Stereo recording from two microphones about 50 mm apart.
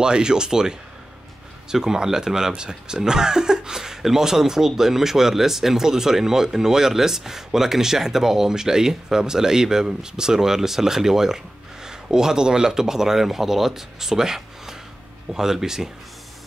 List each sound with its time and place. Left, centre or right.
0.0 s speech: centre